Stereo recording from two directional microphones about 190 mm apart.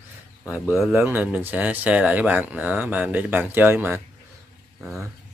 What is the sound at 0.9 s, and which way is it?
Speech, 10° right (ahead or behind).